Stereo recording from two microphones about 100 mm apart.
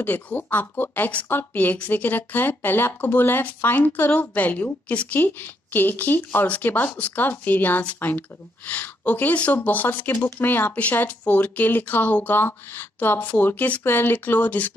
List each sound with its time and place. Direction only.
0.0 s speech: 15° left (ahead or behind)